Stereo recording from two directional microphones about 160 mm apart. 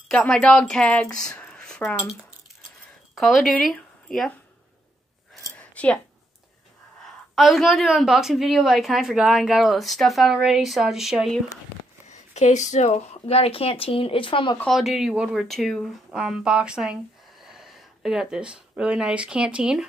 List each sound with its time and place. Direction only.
0.1 s a woman's voice: 5° left (ahead or behind)
3.2 s speech: centre (ahead or behind)
5.6 s a sound: 10° left (ahead or behind)
7.3 s a woman's voice: centre (ahead or behind)
12.1 s speech: 50° left (ahead or behind); by 14.6 s 30° left (ahead or behind)
14.6 s speech: centre (ahead or behind)